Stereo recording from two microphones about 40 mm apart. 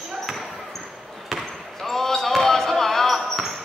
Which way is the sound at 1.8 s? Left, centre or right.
Centre.